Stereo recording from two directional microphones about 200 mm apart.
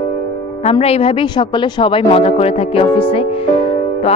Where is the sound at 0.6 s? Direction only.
30° left (ahead or behind).